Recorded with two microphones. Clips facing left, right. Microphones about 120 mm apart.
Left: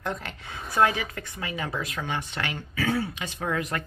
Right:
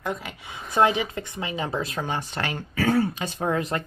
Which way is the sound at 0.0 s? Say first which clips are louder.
Right 2 dB; 5° right (ahead or behind).